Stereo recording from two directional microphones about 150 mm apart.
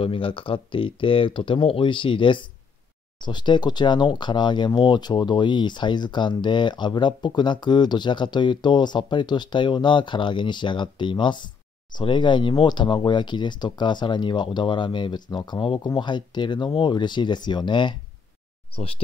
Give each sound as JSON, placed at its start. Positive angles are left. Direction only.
{"t": 0.0, "sound": "speech", "side_deg": 35}